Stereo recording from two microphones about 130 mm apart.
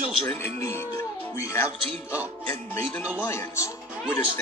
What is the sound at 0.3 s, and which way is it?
Speech, 20° left (ahead or behind).